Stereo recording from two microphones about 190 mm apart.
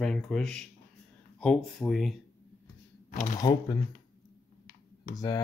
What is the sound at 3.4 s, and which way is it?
Speech, 20° left (ahead or behind).